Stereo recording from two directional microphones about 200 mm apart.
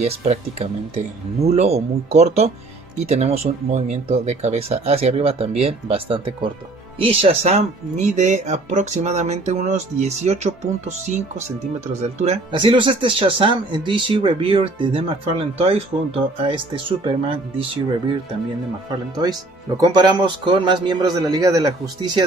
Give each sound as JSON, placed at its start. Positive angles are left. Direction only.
{"t": 0.0, "sound": "speech", "side_deg": -30}
{"t": 19.8, "sound": "speech", "side_deg": -20}